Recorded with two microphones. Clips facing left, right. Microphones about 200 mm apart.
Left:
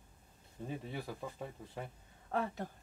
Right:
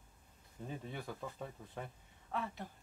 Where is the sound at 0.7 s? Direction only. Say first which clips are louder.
Left 2 dB; 5° left (ahead or behind).